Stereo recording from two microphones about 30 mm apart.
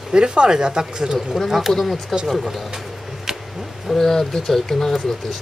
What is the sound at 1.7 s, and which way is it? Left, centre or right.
Speech, left.